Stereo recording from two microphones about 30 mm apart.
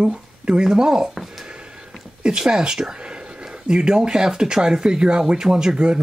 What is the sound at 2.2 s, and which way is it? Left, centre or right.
Speech, right.